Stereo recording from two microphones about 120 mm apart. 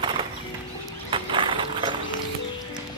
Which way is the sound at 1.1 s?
45° right (ahead or behind).